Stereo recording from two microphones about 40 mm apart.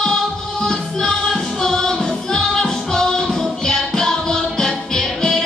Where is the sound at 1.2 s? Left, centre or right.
Centre.